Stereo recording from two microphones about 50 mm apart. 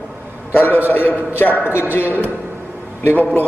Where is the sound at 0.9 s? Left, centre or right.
Left.